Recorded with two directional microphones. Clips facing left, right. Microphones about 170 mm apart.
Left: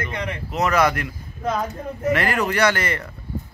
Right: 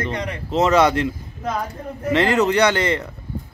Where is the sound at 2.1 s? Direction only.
20° right (ahead or behind).